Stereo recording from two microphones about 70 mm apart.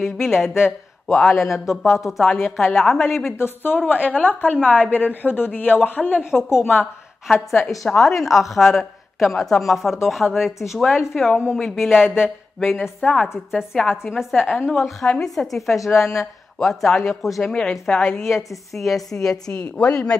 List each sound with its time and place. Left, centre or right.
0.0 s a woman's voice: centre
3.3 s a woman's voice: left
7.8 s a woman's voice: centre
13.0 s a woman's voice: centre
14.7 s a woman's voice: centre